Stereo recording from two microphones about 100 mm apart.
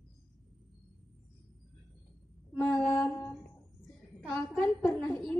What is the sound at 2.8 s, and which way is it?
Mantra, 10° left (ahead or behind).